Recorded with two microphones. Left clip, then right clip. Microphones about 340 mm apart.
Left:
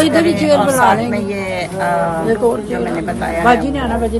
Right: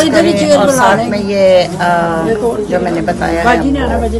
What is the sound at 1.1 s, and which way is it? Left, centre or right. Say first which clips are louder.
Speech: right 11 dB; centre.